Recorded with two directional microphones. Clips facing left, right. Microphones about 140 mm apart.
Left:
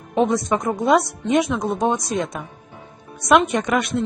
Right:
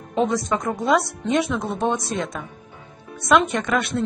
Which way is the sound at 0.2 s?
25° left (ahead or behind).